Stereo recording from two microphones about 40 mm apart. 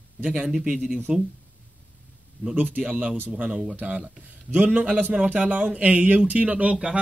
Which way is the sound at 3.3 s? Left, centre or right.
Right.